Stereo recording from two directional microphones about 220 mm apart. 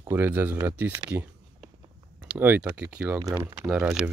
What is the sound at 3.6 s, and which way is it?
Speech, 5° right (ahead or behind).